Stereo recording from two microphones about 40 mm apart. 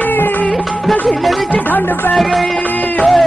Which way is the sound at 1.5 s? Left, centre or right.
Left.